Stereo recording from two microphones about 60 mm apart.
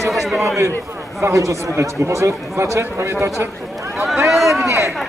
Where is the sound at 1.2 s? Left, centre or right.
Right.